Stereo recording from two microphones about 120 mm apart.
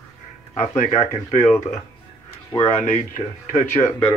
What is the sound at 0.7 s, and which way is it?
Speech, 75° left (ahead or behind).